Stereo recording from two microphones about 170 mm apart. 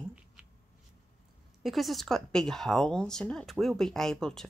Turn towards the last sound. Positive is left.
turn(degrees=5)  # may be behind; listen again after turning